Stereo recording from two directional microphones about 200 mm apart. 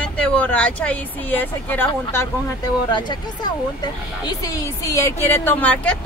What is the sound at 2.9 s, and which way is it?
Speech, 20° left (ahead or behind).